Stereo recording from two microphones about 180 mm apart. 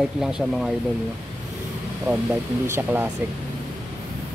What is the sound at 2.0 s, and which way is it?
Speech, 5° right (ahead or behind).